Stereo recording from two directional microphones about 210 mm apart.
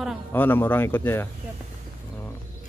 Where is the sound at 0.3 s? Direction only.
10° left (ahead or behind).